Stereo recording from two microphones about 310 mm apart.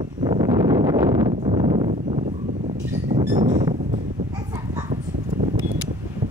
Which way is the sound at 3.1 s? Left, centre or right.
Centre.